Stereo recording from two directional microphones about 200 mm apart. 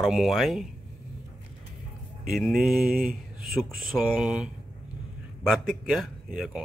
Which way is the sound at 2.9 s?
45° right (ahead or behind).